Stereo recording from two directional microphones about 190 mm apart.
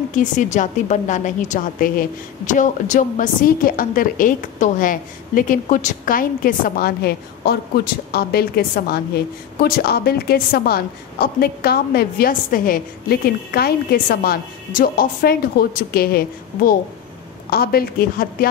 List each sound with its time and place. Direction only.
0.1 s a woman's voice: 40° left (ahead or behind)